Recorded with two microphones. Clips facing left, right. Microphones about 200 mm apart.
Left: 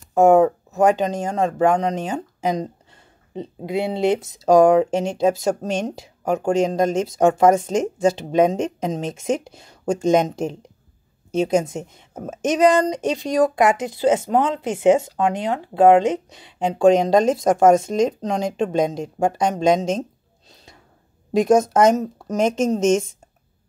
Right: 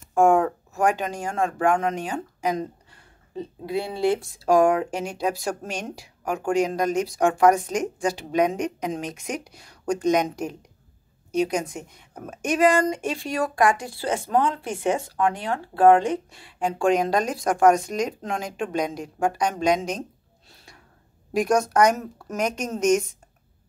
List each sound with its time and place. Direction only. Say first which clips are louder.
0.1 s speech: left 5 dB; 20° left (ahead or behind)
20.4 s gasp: left 3 dB; 20° left (ahead or behind)
21.3 s speech: left 6 dB; 25° left (ahead or behind)